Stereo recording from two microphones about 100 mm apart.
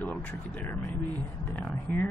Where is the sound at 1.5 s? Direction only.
15° left (ahead or behind).